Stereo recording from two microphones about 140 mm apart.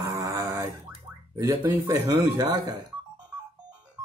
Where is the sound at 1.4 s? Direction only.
25° right (ahead or behind).